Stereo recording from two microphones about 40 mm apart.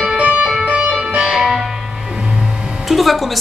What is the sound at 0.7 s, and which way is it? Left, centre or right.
Music, right.